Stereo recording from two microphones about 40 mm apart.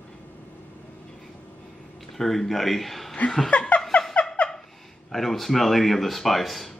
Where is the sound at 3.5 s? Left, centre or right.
Left.